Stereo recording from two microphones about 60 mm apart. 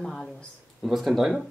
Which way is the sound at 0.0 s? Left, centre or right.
Centre.